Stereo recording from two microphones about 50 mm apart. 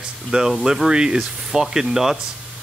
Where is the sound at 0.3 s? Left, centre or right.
Right.